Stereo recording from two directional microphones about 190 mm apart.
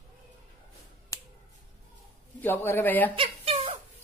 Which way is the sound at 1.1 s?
15° left (ahead or behind).